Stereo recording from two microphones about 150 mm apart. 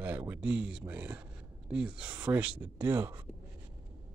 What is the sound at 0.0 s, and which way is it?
Speech, 10° right (ahead or behind).